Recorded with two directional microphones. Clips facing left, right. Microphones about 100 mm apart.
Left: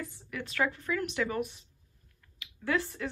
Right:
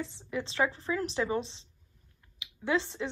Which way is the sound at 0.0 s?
25° right (ahead or behind).